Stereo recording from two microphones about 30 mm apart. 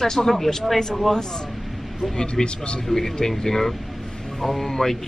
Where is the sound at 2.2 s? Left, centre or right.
Left.